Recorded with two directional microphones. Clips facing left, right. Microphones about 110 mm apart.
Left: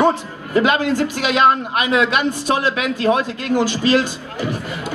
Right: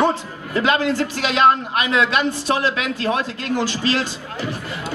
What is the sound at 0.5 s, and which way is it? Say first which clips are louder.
A man's voice: left 2 dB; 15° left (ahead or behind).